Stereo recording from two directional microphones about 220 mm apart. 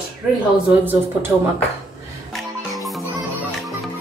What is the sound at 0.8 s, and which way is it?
Speech, 10° right (ahead or behind).